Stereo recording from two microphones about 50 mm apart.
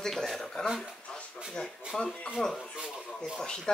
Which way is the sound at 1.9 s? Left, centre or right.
Centre.